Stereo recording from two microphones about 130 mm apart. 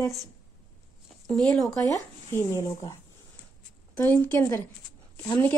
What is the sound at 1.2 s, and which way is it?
Speech, 5° left (ahead or behind).